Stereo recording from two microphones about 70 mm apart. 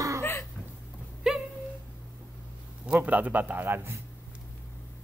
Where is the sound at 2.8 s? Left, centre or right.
Right.